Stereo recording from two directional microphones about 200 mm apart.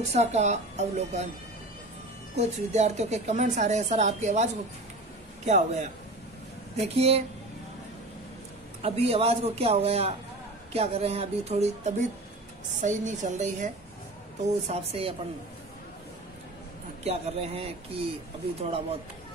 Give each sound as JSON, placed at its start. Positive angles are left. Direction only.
{"t": 0.1, "sound": "a woman's voice", "side_deg": -35}
{"t": 2.3, "sound": "a woman's voice", "side_deg": -35}
{"t": 7.0, "sound": "a woman's voice", "side_deg": -30}
{"t": 8.8, "sound": "a man's voice", "side_deg": -30}
{"t": 17.0, "sound": "a man's voice", "side_deg": -30}